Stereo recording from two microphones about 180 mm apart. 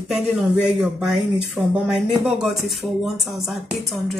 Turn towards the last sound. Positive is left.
turn(degrees=0)  # may be behind; listen again after turning